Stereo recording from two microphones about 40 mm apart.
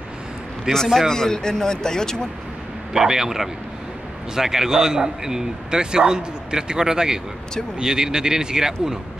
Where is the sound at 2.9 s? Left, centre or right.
Centre.